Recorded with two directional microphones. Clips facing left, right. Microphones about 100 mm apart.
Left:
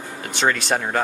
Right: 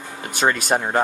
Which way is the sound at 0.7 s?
20° right (ahead or behind).